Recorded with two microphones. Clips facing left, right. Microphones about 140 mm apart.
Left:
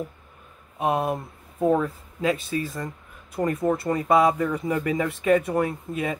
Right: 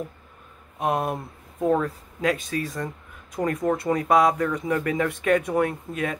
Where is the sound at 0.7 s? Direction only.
Centre (ahead or behind).